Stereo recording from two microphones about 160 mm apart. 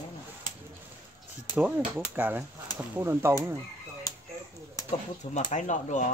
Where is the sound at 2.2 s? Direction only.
10° right (ahead or behind).